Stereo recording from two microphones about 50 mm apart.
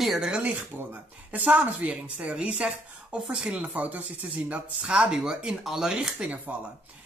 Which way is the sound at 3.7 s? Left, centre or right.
Right.